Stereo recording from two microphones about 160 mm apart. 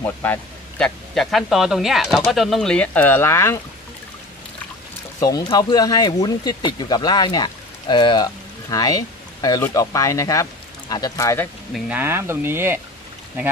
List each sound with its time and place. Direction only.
0.0 s a man's voice: 10° left (ahead or behind)
5.2 s speech: 25° left (ahead or behind)
11.7 s speech: 10° right (ahead or behind)